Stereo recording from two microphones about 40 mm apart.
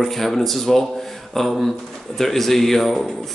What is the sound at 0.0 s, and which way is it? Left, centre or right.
Speech, centre.